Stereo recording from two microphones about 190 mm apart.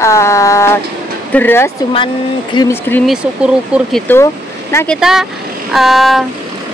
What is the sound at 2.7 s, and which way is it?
Speech, 10° left (ahead or behind).